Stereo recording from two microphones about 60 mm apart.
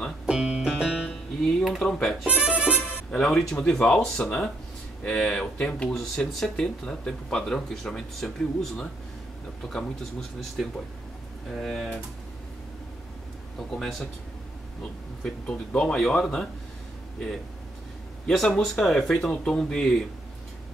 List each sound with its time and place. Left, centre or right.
0.3 s music: centre
1.6 s speech: centre
2.2 s speech: right
3.1 s speech: centre
13.6 s speech: centre
15.4 s speech: centre
18.2 s speech: centre